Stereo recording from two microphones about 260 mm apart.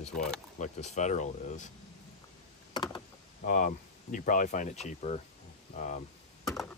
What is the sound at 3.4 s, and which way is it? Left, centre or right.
Speech, left.